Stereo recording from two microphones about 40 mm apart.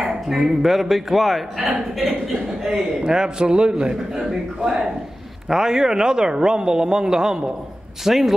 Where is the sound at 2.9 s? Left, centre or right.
Centre.